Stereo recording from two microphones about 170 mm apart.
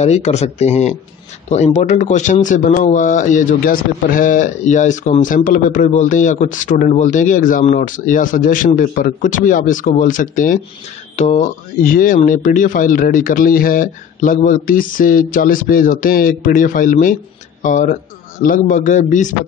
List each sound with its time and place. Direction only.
0.0 s speech: 40° left (ahead or behind)